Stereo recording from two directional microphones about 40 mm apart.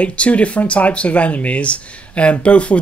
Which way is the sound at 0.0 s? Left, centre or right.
Left.